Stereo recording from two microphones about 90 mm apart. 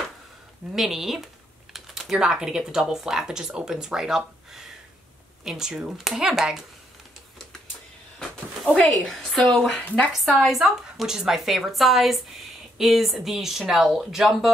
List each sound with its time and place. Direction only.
0.7 s a woman's voice: 5° right (ahead or behind)
8.7 s a woman's voice: 15° left (ahead or behind)
9.0 s a woman's voice: centre (ahead or behind)